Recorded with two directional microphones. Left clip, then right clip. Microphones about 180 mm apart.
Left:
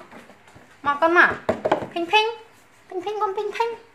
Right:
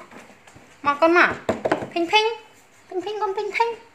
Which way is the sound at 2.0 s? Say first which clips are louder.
Right 1 dB; 30° right (ahead or behind).